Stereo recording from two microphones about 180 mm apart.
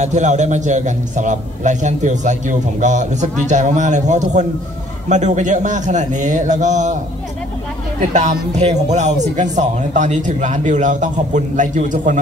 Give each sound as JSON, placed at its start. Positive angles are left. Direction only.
{"t": 0.0, "sound": "a man's voice", "side_deg": -40}
{"t": 8.1, "sound": "a man's voice", "side_deg": -40}